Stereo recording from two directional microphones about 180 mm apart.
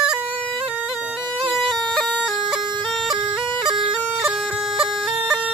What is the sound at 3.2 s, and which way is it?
Bagpipes, 25° right (ahead or behind).